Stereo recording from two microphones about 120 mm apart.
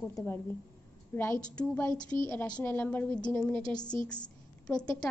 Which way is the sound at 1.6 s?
10° left (ahead or behind).